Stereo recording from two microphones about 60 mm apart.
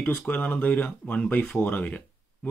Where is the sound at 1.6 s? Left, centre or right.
Left.